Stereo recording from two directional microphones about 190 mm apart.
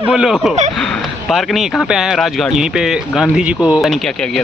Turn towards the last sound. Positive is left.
turn(degrees=0)  # may be behind; listen again after turning